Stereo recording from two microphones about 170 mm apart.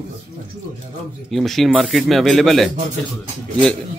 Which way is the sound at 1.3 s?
Centre (ahead or behind).